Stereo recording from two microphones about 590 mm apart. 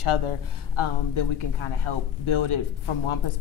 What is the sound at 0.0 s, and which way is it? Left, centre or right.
A woman's voice, left.